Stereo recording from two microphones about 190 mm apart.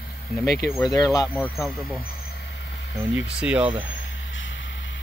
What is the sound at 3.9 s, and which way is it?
Vehicle, 85° left.